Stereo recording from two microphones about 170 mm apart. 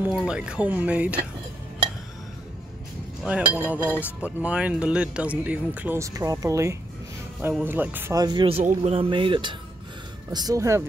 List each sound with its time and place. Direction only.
0.0 s speech: 5° right (ahead or behind)
3.3 s speech: 10° right (ahead or behind)